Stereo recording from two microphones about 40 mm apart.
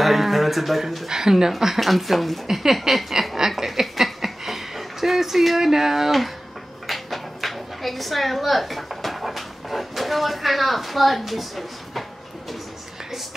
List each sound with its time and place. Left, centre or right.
0.0 s speech: centre
1.0 s speech: centre
1.8 s speech: centre
2.4 s a sound: centre
5.7 s speech: centre